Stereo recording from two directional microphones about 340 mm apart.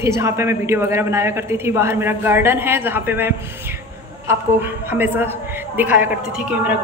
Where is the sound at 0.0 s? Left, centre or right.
Centre.